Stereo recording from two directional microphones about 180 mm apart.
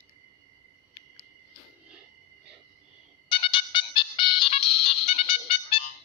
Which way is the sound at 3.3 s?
30° left (ahead or behind).